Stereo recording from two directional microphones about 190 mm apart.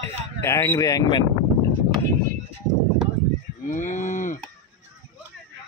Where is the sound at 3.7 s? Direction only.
40° left (ahead or behind).